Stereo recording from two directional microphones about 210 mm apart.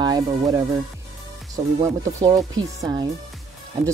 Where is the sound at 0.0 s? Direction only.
20° right (ahead or behind).